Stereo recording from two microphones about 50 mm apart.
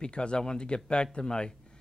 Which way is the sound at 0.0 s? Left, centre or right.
Centre.